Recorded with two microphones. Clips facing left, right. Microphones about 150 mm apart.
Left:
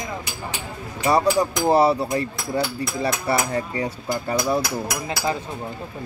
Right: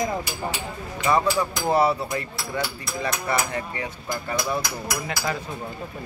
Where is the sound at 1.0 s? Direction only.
35° left (ahead or behind).